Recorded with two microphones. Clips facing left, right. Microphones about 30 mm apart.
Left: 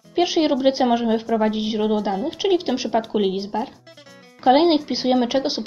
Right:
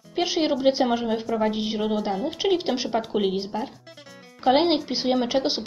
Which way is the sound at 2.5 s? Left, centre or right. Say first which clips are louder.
Left 3 dB; centre.